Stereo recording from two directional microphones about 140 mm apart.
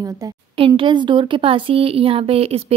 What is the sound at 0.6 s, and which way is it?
Speech, 40° right (ahead or behind).